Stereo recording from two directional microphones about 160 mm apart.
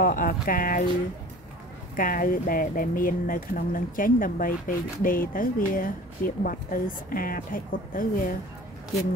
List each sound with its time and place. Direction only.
0.0 s speech: 60° left (ahead or behind)
2.0 s speech: 60° left (ahead or behind)